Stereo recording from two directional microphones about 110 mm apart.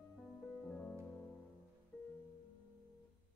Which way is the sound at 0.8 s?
10° left (ahead or behind).